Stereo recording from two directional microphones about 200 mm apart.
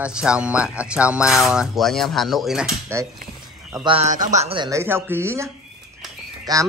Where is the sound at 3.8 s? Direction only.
30° right (ahead or behind).